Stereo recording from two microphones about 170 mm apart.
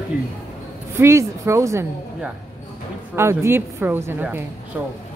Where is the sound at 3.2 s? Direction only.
15° right (ahead or behind).